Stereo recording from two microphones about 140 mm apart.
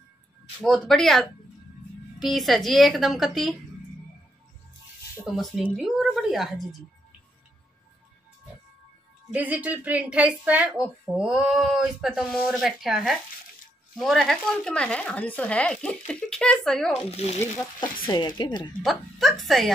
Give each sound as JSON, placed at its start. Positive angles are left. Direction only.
{"t": 0.6, "sound": "a woman's voice", "side_deg": 5}
{"t": 5.3, "sound": "a woman's voice", "side_deg": -5}
{"t": 9.3, "sound": "a woman's voice", "side_deg": -10}
{"t": 17.1, "sound": "speech", "side_deg": 45}
{"t": 18.0, "sound": "speech", "side_deg": 35}
{"t": 18.8, "sound": "a woman's voice", "side_deg": 0}